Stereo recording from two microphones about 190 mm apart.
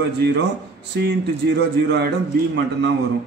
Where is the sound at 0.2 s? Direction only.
65° right (ahead or behind).